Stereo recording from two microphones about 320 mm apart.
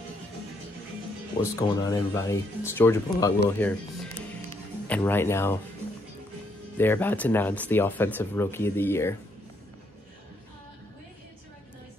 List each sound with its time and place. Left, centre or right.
1.4 s speech: centre
6.8 s speech: centre